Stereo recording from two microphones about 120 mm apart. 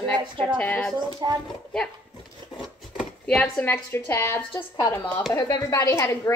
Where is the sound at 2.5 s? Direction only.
5° right (ahead or behind).